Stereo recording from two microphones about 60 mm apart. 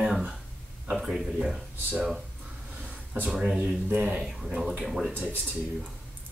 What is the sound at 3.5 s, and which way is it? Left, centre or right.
Speech, right.